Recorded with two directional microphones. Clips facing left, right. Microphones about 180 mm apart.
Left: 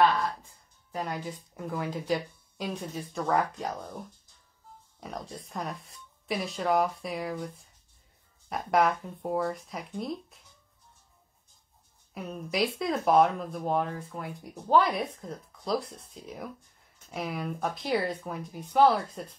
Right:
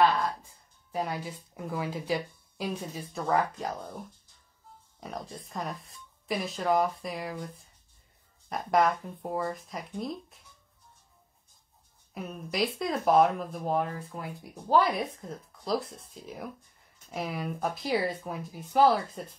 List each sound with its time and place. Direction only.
0.9 s speech: 10° right (ahead or behind)
5.0 s speech: centre (ahead or behind)
12.1 s speech: centre (ahead or behind)